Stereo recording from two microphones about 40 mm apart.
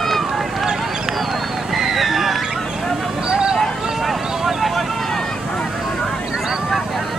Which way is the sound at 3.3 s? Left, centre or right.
Right.